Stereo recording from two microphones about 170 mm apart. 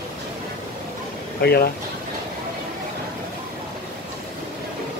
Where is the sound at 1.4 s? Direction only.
65° left (ahead or behind).